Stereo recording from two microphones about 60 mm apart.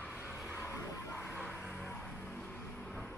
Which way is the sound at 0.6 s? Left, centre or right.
Left.